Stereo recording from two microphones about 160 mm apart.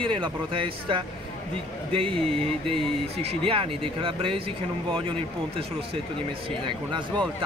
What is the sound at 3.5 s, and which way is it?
Speech, 35° right (ahead or behind).